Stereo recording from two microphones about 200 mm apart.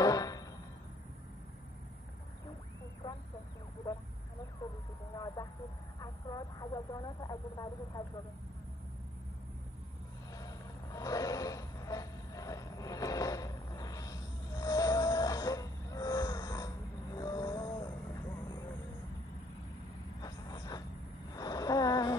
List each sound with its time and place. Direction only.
0.0 s music: 20° left (ahead or behind)
5.1 s vehicle: 20° left (ahead or behind)
10.3 s a sound: 15° left (ahead or behind)
14.6 s wild animals: 20° left (ahead or behind)
20.2 s vehicle: 20° left (ahead or behind)
21.4 s a sound: 20° left (ahead or behind)